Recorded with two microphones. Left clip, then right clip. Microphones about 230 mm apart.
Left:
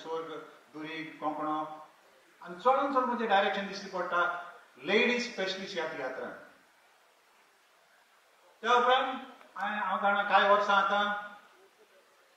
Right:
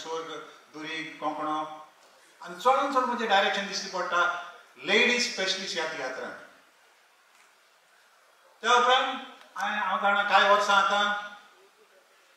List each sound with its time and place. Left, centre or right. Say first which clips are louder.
0.0 s a sound: right 3 dB; centre
2.6 s speech: right 3 dB; centre
6.0 s speech: right 3 dB; centre
8.5 s speech: right 4 dB; centre